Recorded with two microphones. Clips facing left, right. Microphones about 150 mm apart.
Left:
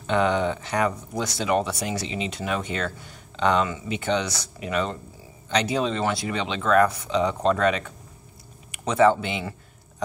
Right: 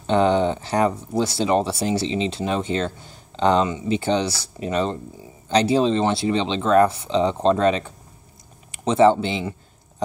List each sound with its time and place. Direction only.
0.0 s speech: 30° right (ahead or behind)